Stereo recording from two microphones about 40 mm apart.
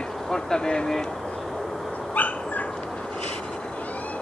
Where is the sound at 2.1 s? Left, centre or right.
Left.